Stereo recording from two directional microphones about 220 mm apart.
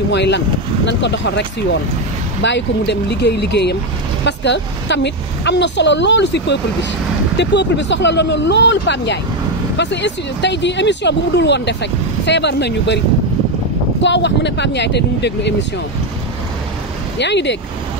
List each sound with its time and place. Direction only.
0.1 s speech: 50° left (ahead or behind)
14.0 s speech: 55° left (ahead or behind)
17.2 s speech: 50° left (ahead or behind)